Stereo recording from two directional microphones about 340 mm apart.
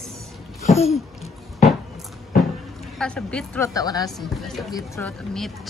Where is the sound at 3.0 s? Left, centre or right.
Centre.